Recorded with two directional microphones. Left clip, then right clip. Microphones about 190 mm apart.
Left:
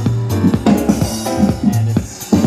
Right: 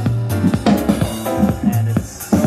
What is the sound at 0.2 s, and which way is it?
Music, 10° right (ahead or behind).